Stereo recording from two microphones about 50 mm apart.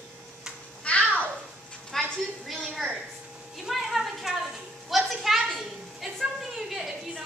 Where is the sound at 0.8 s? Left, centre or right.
Left.